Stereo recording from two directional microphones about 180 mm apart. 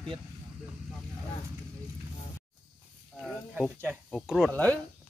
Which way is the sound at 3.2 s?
Centre (ahead or behind).